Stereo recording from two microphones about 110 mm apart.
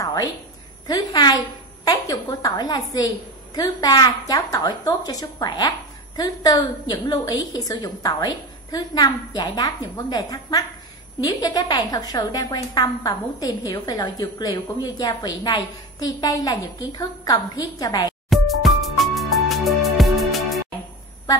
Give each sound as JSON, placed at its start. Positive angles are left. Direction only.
{"t": 0.0, "sound": "a sound", "side_deg": 35}
{"t": 0.8, "sound": "a woman's voice", "side_deg": 35}
{"t": 18.3, "sound": "music", "side_deg": 0}